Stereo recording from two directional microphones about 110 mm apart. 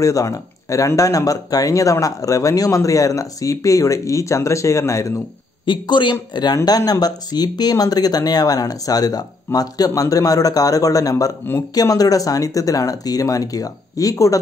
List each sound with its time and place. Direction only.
0.0 s speech: 30° left (ahead or behind)
5.7 s speech: 45° left (ahead or behind)